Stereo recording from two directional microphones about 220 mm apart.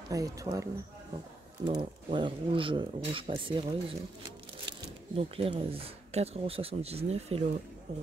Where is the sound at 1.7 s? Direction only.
20° right (ahead or behind).